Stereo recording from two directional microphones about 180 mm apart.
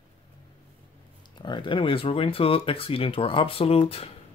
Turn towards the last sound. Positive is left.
turn(degrees=35)  # may be behind; listen again after turning